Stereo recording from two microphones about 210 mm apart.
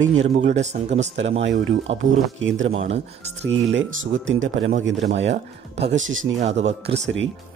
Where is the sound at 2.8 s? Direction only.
30° right (ahead or behind).